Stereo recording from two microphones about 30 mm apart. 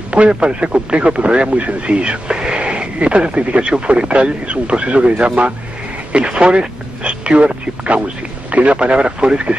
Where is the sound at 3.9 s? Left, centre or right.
Right.